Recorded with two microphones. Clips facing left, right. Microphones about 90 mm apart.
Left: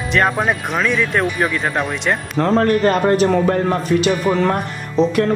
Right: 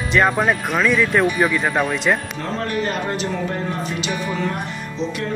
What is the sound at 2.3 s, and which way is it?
Speech, 60° left (ahead or behind).